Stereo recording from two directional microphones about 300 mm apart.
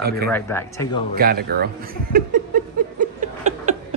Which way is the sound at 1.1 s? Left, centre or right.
Right.